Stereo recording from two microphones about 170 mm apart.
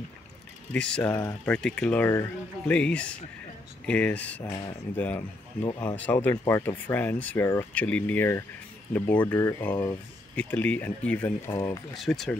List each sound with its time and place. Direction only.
0.7 s speech: 5° left (ahead or behind)
11.9 s speech: centre (ahead or behind)